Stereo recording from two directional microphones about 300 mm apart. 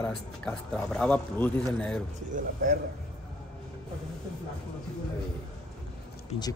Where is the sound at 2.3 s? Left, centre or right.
Right.